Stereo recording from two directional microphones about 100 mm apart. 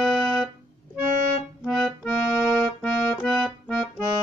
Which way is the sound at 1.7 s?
Centre (ahead or behind).